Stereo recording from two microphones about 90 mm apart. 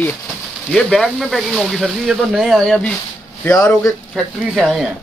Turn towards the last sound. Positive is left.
turn(degrees=0)  # may be behind; listen again after turning